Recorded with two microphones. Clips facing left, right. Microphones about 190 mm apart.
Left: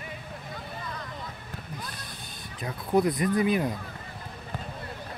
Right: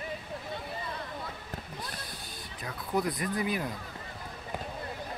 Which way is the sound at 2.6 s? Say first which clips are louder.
Left 7 dB; 25° left (ahead or behind).